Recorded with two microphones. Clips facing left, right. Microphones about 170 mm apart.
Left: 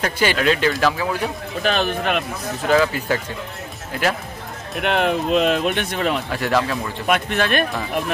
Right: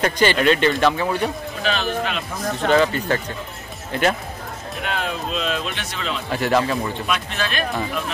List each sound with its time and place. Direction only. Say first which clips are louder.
0.0 s speech: right 2 dB; 5° left (ahead or behind)
1.6 s speech: left 3 dB; 50° left (ahead or behind)
2.7 s speech: left 1 dB; 5° left (ahead or behind)
4.8 s speech: left 8 dB; 60° left (ahead or behind)
6.3 s speech: right 1 dB; centre (ahead or behind)
7.1 s speech: left 6 dB; 55° left (ahead or behind)